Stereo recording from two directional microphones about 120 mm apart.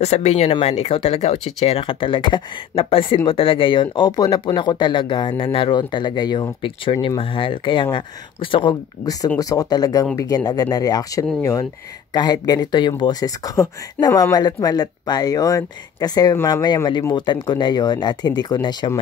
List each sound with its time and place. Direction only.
0.0 s speech: 65° left (ahead or behind); by 8.7 s 45° left (ahead or behind)
9.0 s speech: 30° left (ahead or behind)